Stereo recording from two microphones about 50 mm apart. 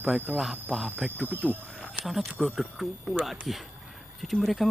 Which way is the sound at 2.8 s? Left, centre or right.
Centre.